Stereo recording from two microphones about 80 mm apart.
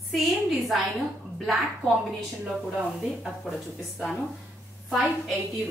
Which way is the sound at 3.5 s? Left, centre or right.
Centre.